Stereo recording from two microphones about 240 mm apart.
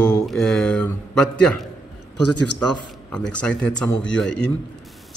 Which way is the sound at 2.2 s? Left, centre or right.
Left.